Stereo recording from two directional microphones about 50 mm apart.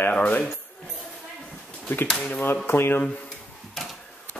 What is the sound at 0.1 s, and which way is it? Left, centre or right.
Speech, left.